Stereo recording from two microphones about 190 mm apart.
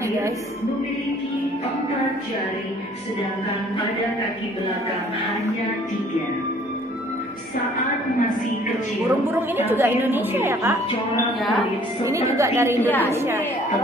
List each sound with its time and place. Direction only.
9.0 s a woman's voice: 10° right (ahead or behind)
12.0 s a woman's voice: 15° right (ahead or behind)
12.8 s a woman's voice: 10° left (ahead or behind)
13.1 s a woman's voice: 15° right (ahead or behind)